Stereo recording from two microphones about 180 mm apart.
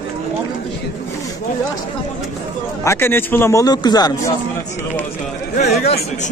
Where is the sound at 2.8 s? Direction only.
15° left (ahead or behind).